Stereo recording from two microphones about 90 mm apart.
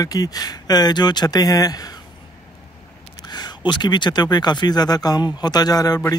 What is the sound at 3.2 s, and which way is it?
Speech, 50° left (ahead or behind).